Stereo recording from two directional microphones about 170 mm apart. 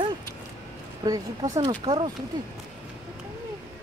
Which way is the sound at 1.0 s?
20° right (ahead or behind).